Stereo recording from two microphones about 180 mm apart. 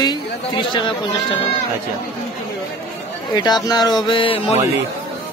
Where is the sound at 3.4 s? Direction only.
25° left (ahead or behind).